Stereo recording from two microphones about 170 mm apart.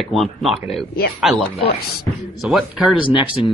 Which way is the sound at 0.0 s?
Centre (ahead or behind).